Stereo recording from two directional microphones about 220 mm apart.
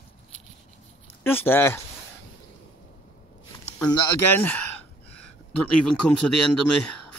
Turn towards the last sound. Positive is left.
turn(degrees=5)  # may be behind; listen again after turning